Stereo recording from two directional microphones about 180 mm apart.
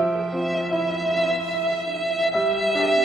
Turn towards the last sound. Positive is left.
turn(degrees=0)  # may be behind; listen again after turning